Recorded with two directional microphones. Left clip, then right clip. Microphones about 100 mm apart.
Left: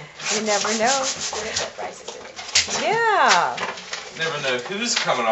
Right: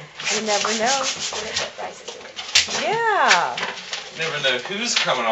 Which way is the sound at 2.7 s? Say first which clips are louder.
Left 1 dB; 5° left (ahead or behind).